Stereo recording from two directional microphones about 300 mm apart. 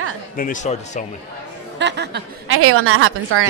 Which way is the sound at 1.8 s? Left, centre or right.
Right.